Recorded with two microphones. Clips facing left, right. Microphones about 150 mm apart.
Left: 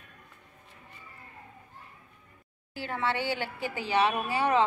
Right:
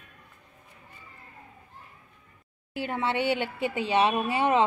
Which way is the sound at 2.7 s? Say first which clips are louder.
Right 3 dB; 20° right (ahead or behind).